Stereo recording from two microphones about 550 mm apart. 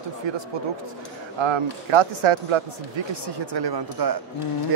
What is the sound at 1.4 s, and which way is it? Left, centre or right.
A man's voice, right.